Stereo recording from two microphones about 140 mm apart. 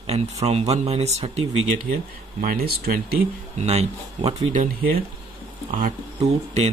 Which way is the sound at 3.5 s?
50° right (ahead or behind).